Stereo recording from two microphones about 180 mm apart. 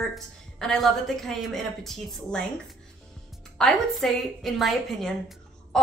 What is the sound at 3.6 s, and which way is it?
A woman's voice, centre (ahead or behind).